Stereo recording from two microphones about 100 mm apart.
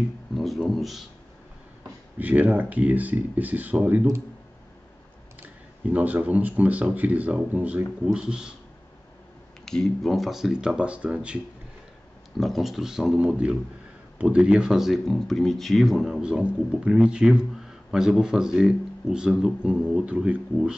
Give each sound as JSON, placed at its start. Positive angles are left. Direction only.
{"t": 0.3, "sound": "a sound", "side_deg": 0}
{"t": 2.1, "sound": "speech", "side_deg": -15}
{"t": 5.9, "sound": "speech", "side_deg": -15}
{"t": 9.7, "sound": "speech", "side_deg": 5}
{"t": 12.4, "sound": "speech", "side_deg": 0}